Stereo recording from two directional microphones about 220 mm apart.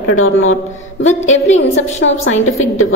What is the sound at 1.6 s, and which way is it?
Speech, 60° left (ahead or behind).